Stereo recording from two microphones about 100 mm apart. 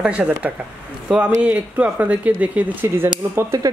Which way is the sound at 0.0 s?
10° right (ahead or behind).